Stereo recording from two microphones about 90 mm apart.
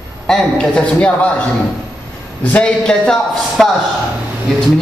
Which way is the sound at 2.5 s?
10° left (ahead or behind).